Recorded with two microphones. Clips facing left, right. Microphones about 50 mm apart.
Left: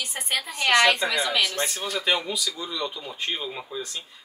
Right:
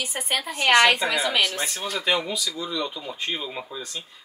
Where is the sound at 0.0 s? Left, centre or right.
Centre.